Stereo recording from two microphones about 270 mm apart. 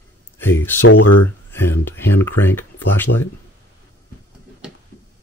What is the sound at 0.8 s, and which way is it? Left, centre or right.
Speech, left.